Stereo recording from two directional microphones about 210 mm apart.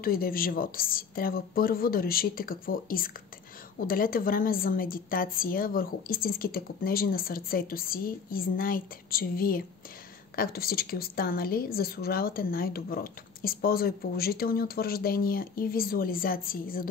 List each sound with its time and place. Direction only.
0.0 s a woman's voice: 45° left (ahead or behind)